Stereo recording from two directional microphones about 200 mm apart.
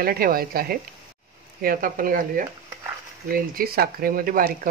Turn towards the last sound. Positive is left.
turn(degrees=-45)  # may be behind; listen again after turning